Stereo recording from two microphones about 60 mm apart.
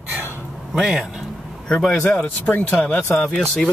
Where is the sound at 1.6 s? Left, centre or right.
Centre.